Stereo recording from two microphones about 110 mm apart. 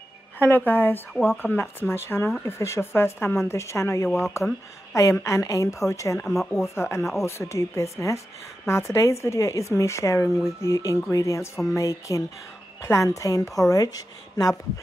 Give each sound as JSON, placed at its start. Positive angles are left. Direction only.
{"t": 0.4, "sound": "speech", "side_deg": 20}
{"t": 6.2, "sound": "speech", "side_deg": 5}
{"t": 6.7, "sound": "a woman's voice", "side_deg": 25}